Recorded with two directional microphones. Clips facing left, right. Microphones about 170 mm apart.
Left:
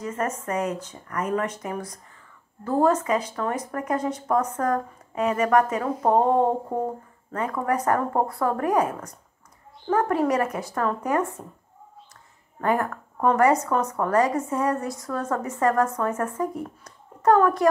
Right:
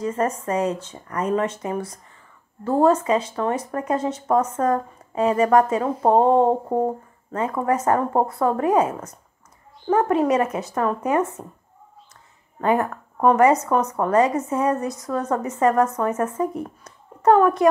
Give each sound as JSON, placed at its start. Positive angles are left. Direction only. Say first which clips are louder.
{"t": 0.0, "sound": "speech", "louder": "right 5 dB", "side_deg": -30}
{"t": 12.5, "sound": "speech", "louder": "right 3 dB", "side_deg": -20}